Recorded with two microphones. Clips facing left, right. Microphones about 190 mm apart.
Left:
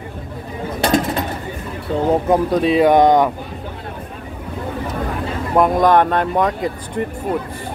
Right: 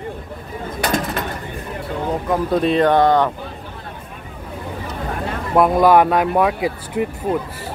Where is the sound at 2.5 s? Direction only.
Centre (ahead or behind).